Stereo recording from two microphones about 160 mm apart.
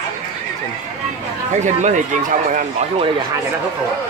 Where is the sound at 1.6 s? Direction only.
50° right (ahead or behind).